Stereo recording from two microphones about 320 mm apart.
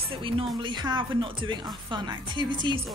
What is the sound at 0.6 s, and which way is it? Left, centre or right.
Speech, centre.